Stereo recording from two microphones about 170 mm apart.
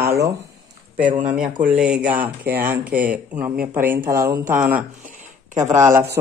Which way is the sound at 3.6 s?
55° right (ahead or behind).